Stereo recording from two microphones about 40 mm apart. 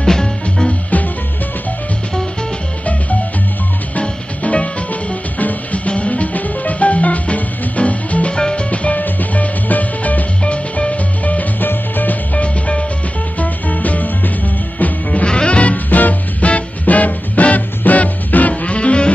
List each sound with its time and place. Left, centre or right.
0.0 s music: centre
0.7 s music: left
4.0 s music: left
5.4 s music: left
8.4 s music: left
8.6 s music: left
10.4 s music: left
11.6 s music: left
12.4 s music: left
15.2 s swing music: left
17.6 s music: left